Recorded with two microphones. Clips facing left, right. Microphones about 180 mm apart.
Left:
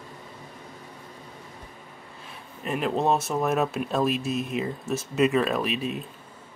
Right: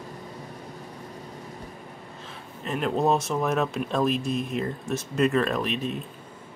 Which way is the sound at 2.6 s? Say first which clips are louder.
Right 1 dB; 5° left (ahead or behind).